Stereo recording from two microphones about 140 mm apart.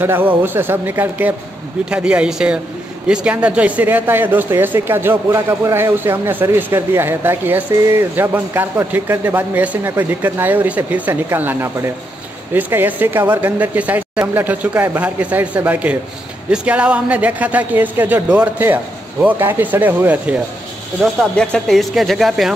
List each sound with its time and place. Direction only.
0.0 s speech: 15° right (ahead or behind)
21.0 s speech: centre (ahead or behind)